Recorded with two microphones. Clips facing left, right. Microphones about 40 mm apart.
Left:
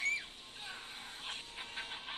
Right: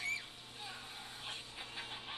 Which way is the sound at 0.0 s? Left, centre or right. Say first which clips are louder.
Left 4 dB; left.